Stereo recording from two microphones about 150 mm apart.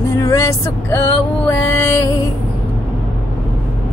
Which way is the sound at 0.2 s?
20° left (ahead or behind).